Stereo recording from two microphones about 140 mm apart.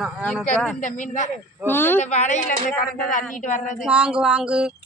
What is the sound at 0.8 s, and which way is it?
Speech, 65° left (ahead or behind).